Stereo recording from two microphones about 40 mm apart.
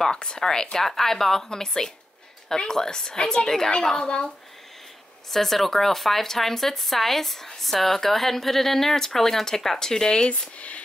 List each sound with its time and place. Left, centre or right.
0.1 s a woman's voice: centre
5.3 s speech: centre; by 10.8 s left